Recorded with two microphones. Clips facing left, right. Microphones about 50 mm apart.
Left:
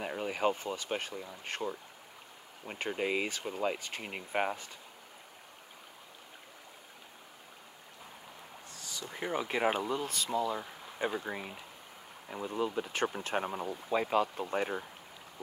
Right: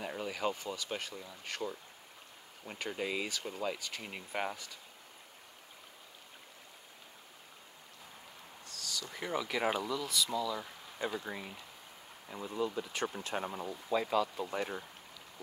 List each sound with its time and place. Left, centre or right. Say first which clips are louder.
0.0 s speech: left 4 dB; left
8.6 s speech: right 2 dB; left
12.3 s speech: left 2 dB; left